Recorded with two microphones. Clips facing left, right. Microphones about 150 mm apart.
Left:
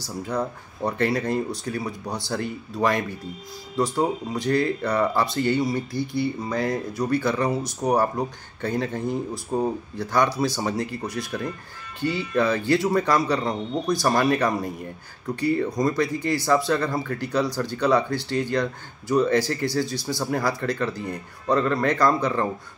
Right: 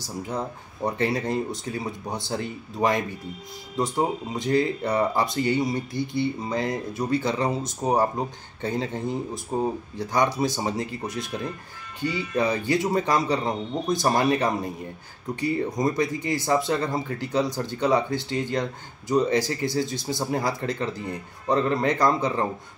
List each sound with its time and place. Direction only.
0.0 s speech: 20° right (ahead or behind)